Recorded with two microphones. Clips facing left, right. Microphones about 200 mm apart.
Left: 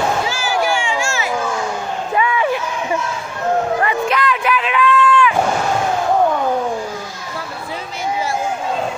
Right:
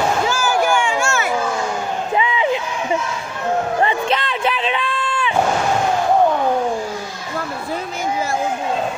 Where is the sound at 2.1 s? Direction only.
20° right (ahead or behind).